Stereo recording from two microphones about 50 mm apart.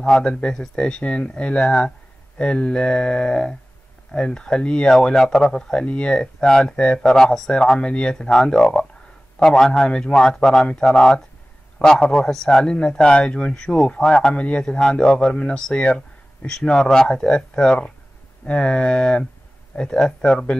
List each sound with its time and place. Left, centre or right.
0.0 s speech: centre